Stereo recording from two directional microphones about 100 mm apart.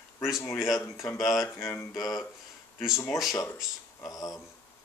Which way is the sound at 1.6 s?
25° left (ahead or behind).